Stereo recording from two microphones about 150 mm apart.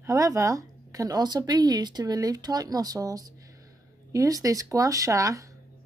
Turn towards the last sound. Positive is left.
turn(degrees=-20)  # may be behind; listen again after turning